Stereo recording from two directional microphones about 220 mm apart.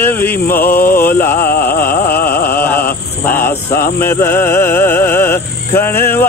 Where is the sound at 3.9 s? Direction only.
10° left (ahead or behind).